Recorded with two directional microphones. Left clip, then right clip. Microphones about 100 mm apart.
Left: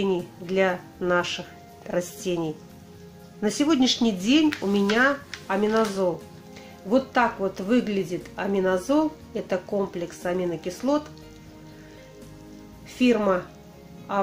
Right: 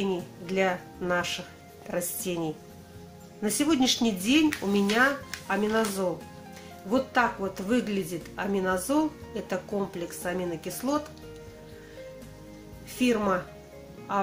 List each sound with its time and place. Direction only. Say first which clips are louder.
0.0 s speech: left 5 dB; 25° left (ahead or behind)
6.9 s speech: left 3 dB; 25° left (ahead or behind)
13.0 s speech: left 4 dB; 25° left (ahead or behind)